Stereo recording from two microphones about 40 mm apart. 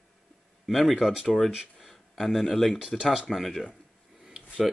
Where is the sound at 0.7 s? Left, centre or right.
Centre.